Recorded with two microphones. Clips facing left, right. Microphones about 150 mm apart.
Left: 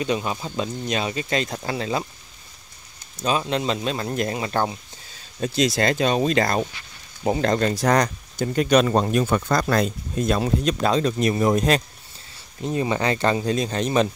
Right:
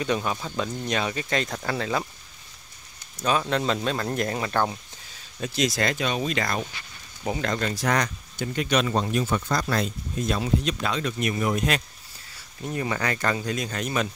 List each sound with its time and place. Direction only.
0.0 s speech: 20° left (ahead or behind)
3.3 s speech: 20° left (ahead or behind)
12.6 s speech: 20° left (ahead or behind)